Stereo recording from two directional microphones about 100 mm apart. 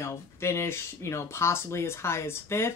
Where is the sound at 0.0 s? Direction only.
25° left (ahead or behind).